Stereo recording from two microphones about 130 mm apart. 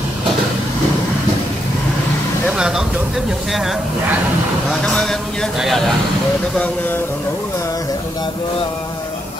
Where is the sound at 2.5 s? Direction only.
5° right (ahead or behind); by 8.3 s 30° left (ahead or behind).